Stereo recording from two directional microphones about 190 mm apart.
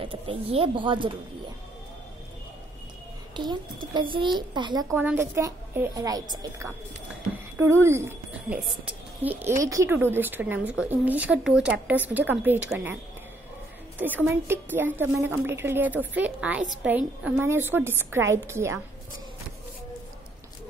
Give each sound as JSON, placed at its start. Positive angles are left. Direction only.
{"t": 0.0, "sound": "speech", "side_deg": -30}
{"t": 3.3, "sound": "speech", "side_deg": -25}
{"t": 4.9, "sound": "a woman's voice", "side_deg": -10}
{"t": 13.9, "sound": "a woman's voice", "side_deg": -10}